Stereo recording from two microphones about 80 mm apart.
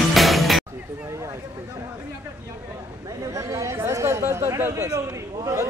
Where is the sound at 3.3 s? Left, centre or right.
Right.